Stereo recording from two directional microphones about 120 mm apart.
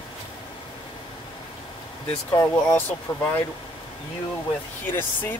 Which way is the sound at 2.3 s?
20° left (ahead or behind).